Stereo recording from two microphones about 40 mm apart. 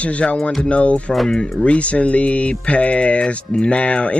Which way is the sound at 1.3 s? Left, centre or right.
Left.